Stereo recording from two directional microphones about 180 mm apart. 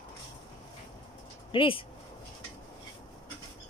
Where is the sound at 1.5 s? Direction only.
30° left (ahead or behind).